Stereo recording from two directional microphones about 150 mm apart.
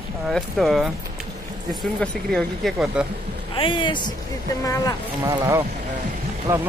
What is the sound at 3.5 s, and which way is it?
A man's voice, 35° left (ahead or behind).